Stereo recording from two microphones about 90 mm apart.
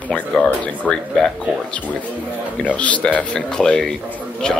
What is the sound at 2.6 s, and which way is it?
Speech, 15° left (ahead or behind).